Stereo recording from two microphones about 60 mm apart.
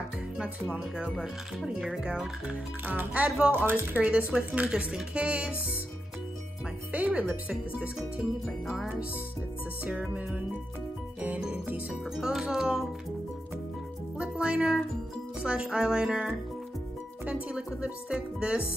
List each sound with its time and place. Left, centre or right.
0.7 s speech: centre
2.9 s speech: right
3.3 s speech: centre
3.5 s speech: right
4.3 s speech: right
6.9 s speech: right
8.2 s speech: centre
12.2 s speech: centre
14.1 s speech: centre